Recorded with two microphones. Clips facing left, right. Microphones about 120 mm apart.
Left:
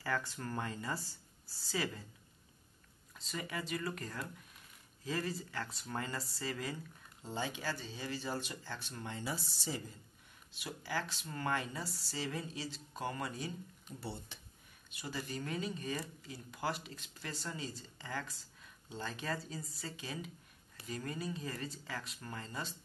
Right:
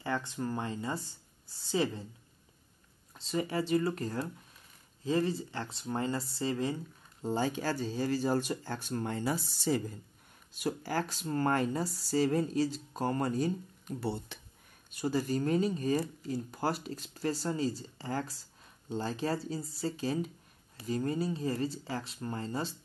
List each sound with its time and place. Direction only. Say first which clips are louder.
0.0 s speech: right 4 dB; 20° right (ahead or behind)
3.2 s speech: right 10 dB; 30° right (ahead or behind)
7.2 s speech: right 8 dB; 40° right (ahead or behind)
10.5 s speech: right 7 dB; 45° right (ahead or behind)
14.0 s speech: right 9 dB; 65° right (ahead or behind)
14.9 s speech: right 12 dB; 40° right (ahead or behind)